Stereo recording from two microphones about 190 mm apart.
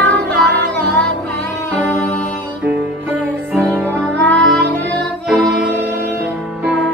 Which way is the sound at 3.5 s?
10° right (ahead or behind).